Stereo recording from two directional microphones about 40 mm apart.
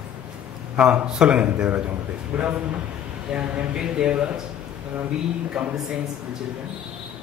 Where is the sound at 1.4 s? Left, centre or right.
Right.